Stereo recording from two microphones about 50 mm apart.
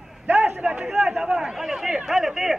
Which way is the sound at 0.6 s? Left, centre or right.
Right.